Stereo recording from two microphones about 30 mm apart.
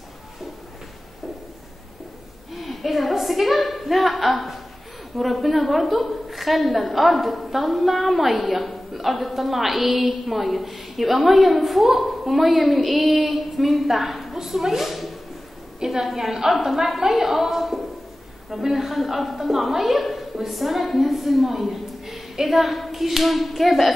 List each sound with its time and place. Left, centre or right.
2.5 s a sound: centre
5.1 s a woman's voice: centre
15.8 s a woman's voice: centre